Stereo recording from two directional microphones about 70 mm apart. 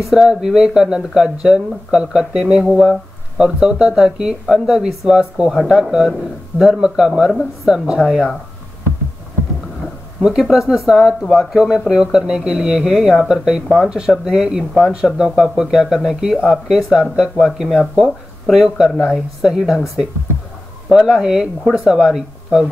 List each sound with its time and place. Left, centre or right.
0.1 s speech: centre
10.2 s speech: centre